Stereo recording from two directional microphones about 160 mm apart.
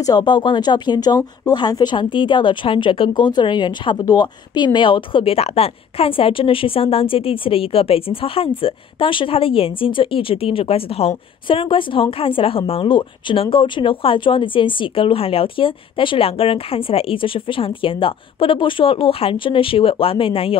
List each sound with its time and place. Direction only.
0.0 s speech: 25° left (ahead or behind)